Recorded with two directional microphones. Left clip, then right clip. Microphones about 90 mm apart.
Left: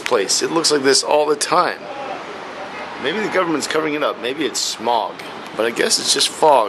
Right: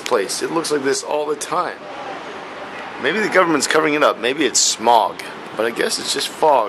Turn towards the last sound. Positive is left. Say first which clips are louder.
# left 2 dB
turn(degrees=0)  # may be behind; listen again after turning